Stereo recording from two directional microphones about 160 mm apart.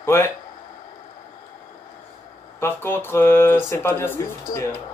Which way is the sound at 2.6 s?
15° left (ahead or behind).